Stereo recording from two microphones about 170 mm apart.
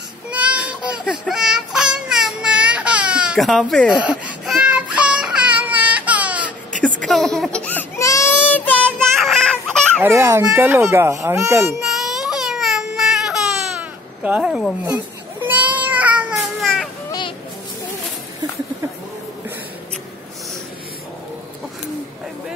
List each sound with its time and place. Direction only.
0.3 s baby cry: 10° right (ahead or behind)
6.8 s baby cry: 5° left (ahead or behind)
9.0 s child singing: centre (ahead or behind)
10.0 s a child's voice: 15° right (ahead or behind)
11.8 s baby cry: centre (ahead or behind)
15.4 s child singing: 10° right (ahead or behind)
16.5 s baby cry: centre (ahead or behind)